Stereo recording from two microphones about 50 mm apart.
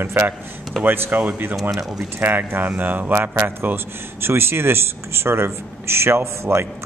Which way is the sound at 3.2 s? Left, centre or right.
Right.